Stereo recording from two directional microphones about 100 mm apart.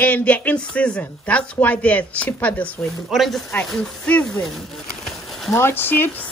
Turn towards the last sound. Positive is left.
turn(degrees=20)  # may be behind; listen again after turning